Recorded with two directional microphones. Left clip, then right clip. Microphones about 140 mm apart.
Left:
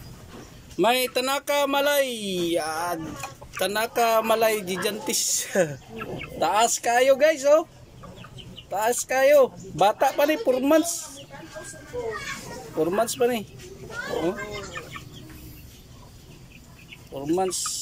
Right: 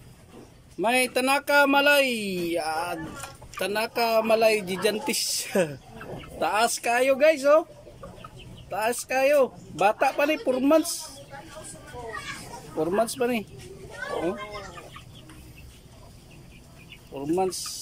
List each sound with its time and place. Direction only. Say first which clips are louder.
0.7 s speech: left 2 dB; 15° right (ahead or behind)
8.6 s speech: left 3 dB; 15° right (ahead or behind)
12.7 s speech: left 1 dB; 15° right (ahead or behind)
17.1 s speech: left 1 dB; 10° right (ahead or behind)